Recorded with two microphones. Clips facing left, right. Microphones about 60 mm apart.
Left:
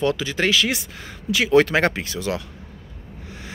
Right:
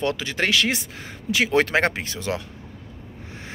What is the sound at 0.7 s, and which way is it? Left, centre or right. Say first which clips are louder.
Speech: even; right.